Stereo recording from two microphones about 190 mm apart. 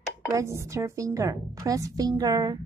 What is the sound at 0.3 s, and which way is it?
A woman's voice, 15° right (ahead or behind).